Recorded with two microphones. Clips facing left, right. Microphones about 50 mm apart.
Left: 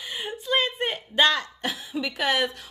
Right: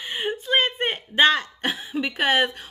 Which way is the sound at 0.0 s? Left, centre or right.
Right.